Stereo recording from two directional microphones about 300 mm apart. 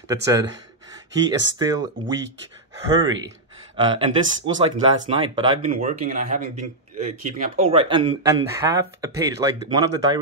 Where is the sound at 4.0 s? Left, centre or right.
Centre.